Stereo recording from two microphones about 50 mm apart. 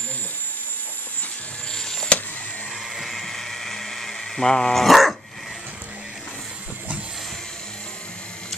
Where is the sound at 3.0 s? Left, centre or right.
Centre.